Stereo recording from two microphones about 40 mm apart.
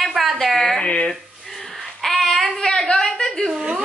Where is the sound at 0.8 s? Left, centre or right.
Left.